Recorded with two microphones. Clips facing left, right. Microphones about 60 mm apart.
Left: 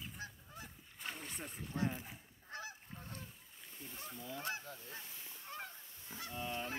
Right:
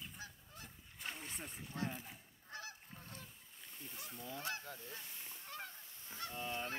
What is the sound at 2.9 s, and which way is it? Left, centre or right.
Goose, centre.